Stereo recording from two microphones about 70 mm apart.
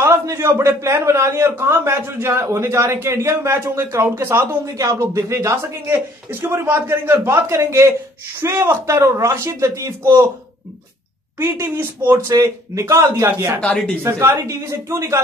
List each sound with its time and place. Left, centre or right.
0.0 s a man's voice: right
11.3 s a man's voice: right
12.4 s a man's voice: right